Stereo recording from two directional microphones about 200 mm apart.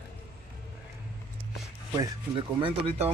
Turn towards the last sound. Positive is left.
turn(degrees=-30)  # may be behind; listen again after turning